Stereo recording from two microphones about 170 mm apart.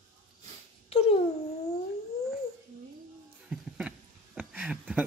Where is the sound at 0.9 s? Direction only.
35° left (ahead or behind).